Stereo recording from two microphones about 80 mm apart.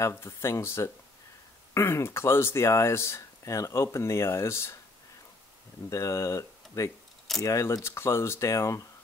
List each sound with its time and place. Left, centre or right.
0.1 s speech: left
5.9 s speech: left